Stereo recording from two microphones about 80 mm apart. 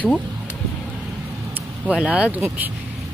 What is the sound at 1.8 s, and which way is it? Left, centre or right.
Speech, centre.